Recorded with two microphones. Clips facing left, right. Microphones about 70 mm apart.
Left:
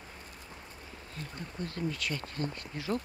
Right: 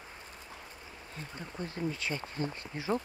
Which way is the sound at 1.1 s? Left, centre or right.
Right.